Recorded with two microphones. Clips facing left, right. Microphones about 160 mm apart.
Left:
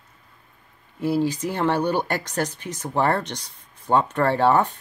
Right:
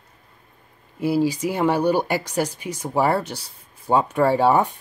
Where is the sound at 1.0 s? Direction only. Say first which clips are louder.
Right 2 dB; 10° right (ahead or behind).